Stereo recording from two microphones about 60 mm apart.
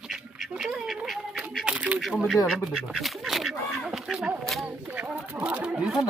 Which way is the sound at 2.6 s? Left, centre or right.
Centre.